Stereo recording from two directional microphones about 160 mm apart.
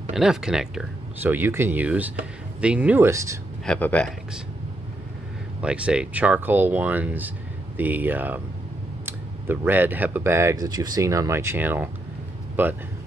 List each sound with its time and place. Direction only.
0.1 s speech: 5° right (ahead or behind); by 3.3 s 20° right (ahead or behind)
3.6 s speech: 5° left (ahead or behind)
5.6 s speech: 5° right (ahead or behind)